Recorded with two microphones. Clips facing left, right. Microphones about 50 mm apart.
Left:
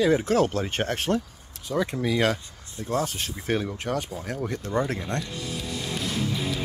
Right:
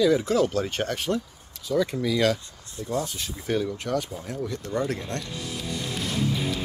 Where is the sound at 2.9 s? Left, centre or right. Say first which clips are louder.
Left 2 dB; left.